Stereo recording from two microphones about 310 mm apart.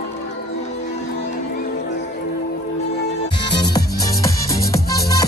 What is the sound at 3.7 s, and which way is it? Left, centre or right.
Music, centre.